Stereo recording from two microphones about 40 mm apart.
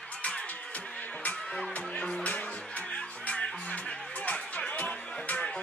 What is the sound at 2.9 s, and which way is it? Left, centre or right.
Music, left.